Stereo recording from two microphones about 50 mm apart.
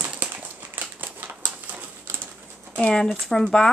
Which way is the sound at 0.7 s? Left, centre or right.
Right.